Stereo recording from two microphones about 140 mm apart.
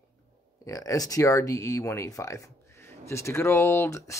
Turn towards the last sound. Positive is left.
turn(degrees=20)  # may be behind; listen again after turning